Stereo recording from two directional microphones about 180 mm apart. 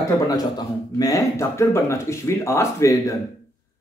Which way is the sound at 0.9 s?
20° left (ahead or behind).